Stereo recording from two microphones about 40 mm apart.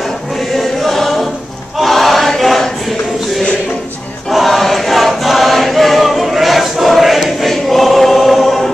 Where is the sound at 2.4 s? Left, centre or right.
Centre.